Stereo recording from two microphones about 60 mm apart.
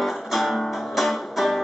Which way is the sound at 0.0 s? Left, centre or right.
Centre.